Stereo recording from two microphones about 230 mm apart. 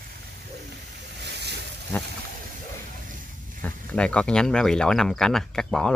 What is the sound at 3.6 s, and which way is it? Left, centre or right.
Speech, centre.